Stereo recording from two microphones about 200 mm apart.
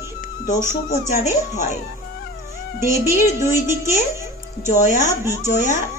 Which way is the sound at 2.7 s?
15° right (ahead or behind).